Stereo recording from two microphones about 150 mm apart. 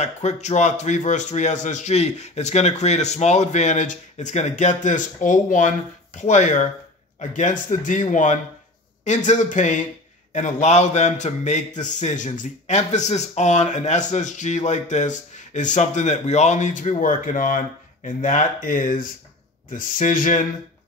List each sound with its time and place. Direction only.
0.0 s a man's voice: 50° left (ahead or behind)